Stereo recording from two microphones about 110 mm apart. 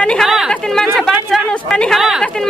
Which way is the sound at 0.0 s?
10° left (ahead or behind).